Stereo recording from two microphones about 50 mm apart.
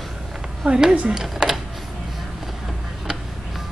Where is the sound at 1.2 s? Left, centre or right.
Centre.